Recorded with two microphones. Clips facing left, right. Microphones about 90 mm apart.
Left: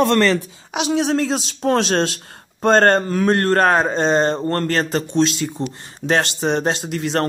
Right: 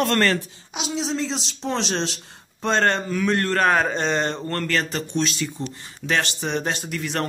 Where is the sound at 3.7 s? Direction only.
30° left (ahead or behind).